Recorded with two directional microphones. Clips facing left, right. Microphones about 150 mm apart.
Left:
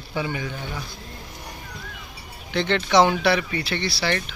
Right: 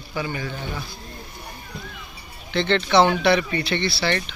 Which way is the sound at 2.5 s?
10° left (ahead or behind).